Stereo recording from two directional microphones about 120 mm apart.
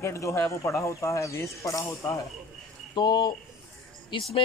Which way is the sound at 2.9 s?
35° left (ahead or behind).